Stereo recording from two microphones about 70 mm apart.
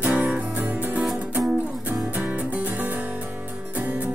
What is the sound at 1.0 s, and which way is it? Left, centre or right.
Music, centre.